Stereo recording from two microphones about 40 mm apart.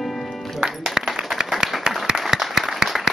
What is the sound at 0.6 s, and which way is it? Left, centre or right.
Music, centre.